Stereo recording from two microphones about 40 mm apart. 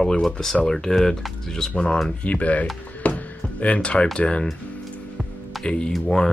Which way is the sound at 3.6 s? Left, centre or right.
Left.